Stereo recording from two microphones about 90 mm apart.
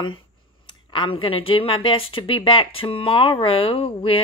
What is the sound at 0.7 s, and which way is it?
Speech, 65° left (ahead or behind).